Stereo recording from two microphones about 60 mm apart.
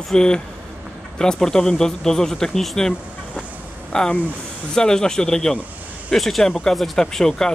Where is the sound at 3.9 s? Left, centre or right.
Centre.